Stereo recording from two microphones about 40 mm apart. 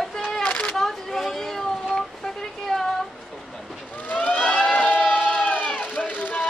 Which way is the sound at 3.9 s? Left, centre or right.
Left.